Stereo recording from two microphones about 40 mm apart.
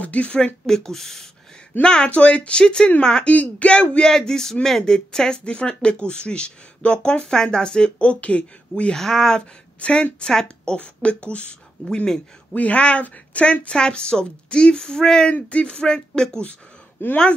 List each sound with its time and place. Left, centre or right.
0.0 s a woman's voice: left
0.7 s speech: centre
1.8 s speech: left
2.0 s a woman's voice: left
2.6 s speech: centre
3.3 s a woman's voice: left
4.0 s speech: centre; by 8.9 s left
8.9 s speech: centre
9.8 s a woman's voice: left
10.2 s speech: centre
10.8 s speech: left
11.8 s a woman's voice: left; by 15.2 s centre
15.2 s speech: left
17.0 s speech: left